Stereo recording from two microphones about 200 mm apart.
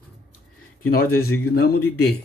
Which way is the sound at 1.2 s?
50° left (ahead or behind).